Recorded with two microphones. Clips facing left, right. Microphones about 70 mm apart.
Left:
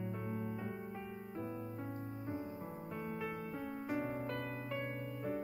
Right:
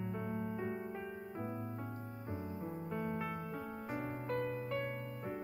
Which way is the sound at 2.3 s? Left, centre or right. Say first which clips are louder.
Right 2 dB; right.